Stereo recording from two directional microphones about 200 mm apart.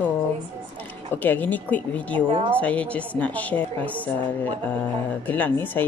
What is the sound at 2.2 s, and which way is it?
Speech, 25° right (ahead or behind).